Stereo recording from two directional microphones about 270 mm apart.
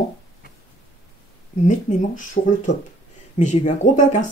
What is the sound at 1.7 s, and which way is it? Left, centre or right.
Speech, left.